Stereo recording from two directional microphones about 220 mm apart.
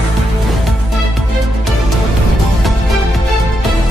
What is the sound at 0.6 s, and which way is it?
Music, centre (ahead or behind).